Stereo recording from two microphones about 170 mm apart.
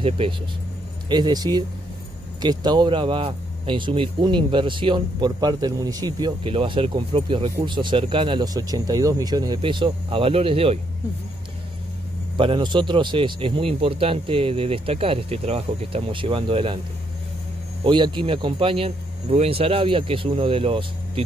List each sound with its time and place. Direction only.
1.0 s speech: 25° right (ahead or behind)
12.4 s speech: 30° right (ahead or behind)
17.8 s speech: 25° right (ahead or behind)